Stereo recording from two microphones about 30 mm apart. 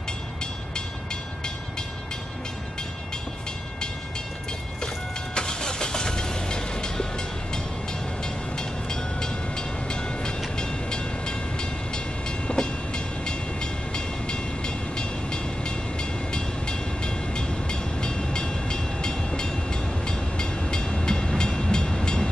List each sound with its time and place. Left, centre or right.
4.8 s vehicle: left
8.2 s train: left
21.4 s vehicle: left
22.0 s train: left